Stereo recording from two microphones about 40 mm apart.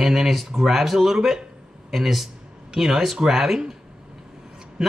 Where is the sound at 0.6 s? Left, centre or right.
Centre.